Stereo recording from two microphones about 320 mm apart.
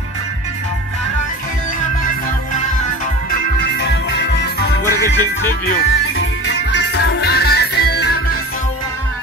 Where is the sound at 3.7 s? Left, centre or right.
Left.